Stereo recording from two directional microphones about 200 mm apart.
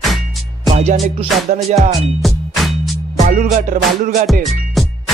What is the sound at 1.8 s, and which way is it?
Music, centre (ahead or behind).